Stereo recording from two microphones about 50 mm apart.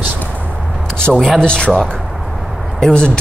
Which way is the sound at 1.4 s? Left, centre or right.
Centre.